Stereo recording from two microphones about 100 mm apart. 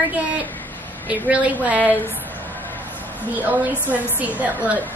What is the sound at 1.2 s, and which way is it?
Speech, 15° right (ahead or behind).